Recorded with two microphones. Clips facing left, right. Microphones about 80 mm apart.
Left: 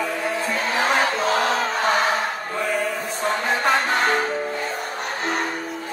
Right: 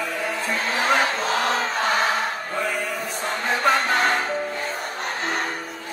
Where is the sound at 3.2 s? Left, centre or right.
Left.